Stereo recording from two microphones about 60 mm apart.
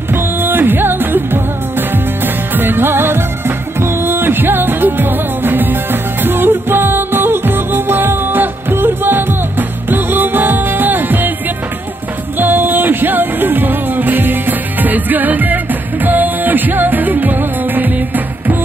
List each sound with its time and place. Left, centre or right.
0.1 s music: right
12.4 s music: right